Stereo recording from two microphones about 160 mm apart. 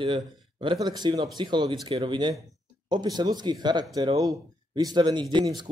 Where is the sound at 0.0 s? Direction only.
30° right (ahead or behind).